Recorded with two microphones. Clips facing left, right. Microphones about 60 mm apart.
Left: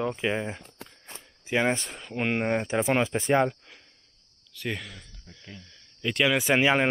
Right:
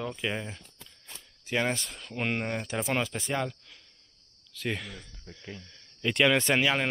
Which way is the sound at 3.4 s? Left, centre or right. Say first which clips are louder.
Left 8 dB; left.